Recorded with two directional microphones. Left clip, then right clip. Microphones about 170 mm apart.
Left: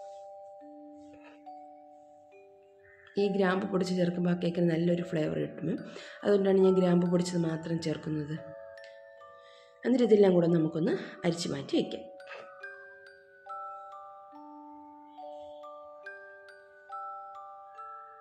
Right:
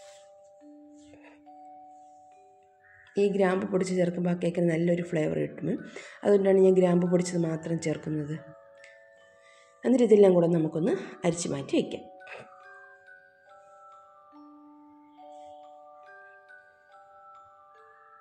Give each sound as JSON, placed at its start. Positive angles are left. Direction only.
{"t": 3.2, "sound": "speech", "side_deg": -15}
{"t": 9.8, "sound": "speech", "side_deg": -15}
{"t": 11.9, "sound": "music", "side_deg": -15}